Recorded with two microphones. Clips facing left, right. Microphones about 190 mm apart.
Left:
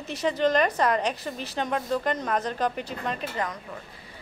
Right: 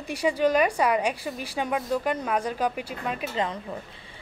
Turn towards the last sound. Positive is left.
turn(degrees=-25)  # may be behind; listen again after turning